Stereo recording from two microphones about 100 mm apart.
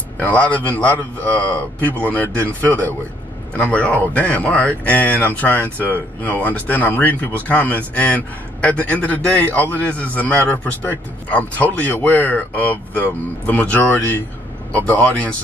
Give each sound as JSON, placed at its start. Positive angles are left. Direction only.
{"t": 0.2, "sound": "a man's voice", "side_deg": 15}